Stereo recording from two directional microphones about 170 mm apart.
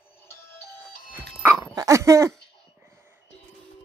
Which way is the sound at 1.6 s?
20° right (ahead or behind).